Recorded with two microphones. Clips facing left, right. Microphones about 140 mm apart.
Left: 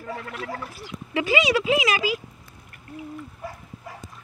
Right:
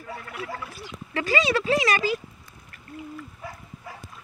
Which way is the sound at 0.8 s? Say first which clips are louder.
Left 3 dB; 15° left (ahead or behind).